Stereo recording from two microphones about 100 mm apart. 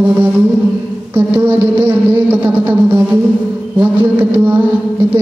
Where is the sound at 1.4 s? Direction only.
15° right (ahead or behind).